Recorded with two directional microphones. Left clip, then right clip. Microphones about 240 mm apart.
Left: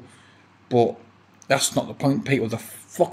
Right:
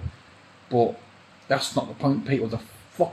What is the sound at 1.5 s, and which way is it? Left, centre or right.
Speech, centre.